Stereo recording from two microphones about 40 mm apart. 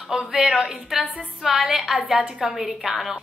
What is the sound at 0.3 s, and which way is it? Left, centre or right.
A woman's voice, centre.